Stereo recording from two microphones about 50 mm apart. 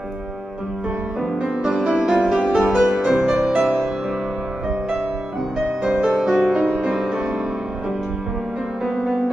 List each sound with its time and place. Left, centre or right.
1.2 s music: centre
3.0 s music: centre
5.9 s music: centre
8.9 s music: centre